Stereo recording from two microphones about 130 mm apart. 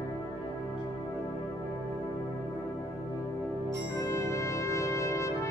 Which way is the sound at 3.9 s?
25° left (ahead or behind).